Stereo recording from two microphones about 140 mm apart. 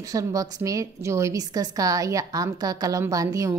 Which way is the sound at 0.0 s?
25° right (ahead or behind).